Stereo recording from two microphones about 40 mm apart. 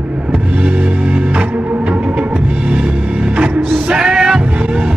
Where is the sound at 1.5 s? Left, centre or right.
Right.